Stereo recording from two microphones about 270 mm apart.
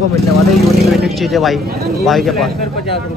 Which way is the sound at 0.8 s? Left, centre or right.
Centre.